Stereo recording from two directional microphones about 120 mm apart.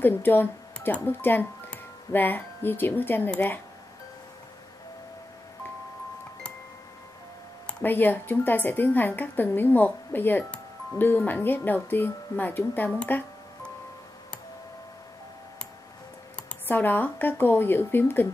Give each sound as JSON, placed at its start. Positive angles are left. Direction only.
{"t": 0.0, "sound": "speech", "side_deg": 15}
{"t": 7.6, "sound": "speech", "side_deg": 15}
{"t": 13.0, "sound": "music", "side_deg": 10}
{"t": 16.6, "sound": "speech", "side_deg": 15}